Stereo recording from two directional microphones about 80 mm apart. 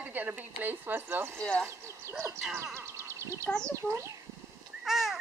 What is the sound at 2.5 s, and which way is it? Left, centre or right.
Speech, right.